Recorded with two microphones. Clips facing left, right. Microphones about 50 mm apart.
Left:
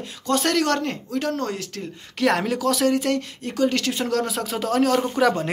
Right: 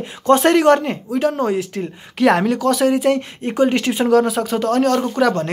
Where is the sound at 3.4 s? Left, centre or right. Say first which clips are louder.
Right 5 dB; right.